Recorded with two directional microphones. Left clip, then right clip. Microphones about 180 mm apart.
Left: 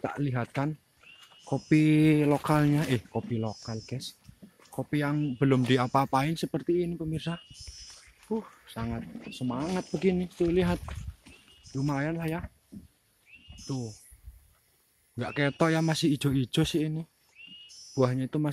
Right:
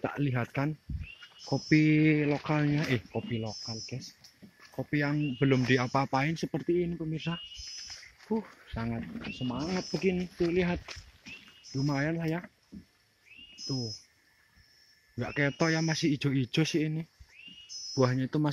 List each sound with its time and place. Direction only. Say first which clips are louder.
0.0 s speech: even; centre (ahead or behind); by 4.0 s 25° left (ahead or behind)
4.6 s speech: left 1 dB; 5° left (ahead or behind)
9.3 s speech: left 3 dB; 15° left (ahead or behind)
11.7 s speech: even; centre (ahead or behind)
13.7 s speech: even; 5° left (ahead or behind)
15.1 s speech: left 2 dB; 10° left (ahead or behind)
17.4 s a sound: left 1 dB; 5° left (ahead or behind)
17.9 s speech: left 1 dB; 5° left (ahead or behind)